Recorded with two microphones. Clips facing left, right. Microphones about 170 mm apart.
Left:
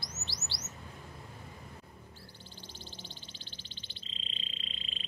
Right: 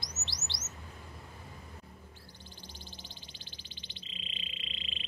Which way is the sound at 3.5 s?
15° right (ahead or behind).